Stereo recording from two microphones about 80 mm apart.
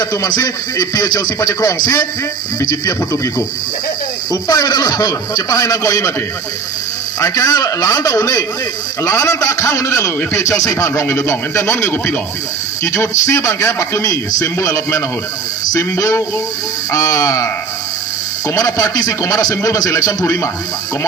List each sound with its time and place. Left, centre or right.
0.0 s speech: left
7.2 s a man's voice: left
18.5 s speech: left